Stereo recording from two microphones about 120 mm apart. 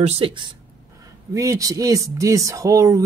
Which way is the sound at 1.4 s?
30° right (ahead or behind).